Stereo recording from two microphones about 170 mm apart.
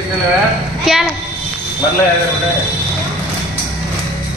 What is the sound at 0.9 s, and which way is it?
Speech, 5° right (ahead or behind).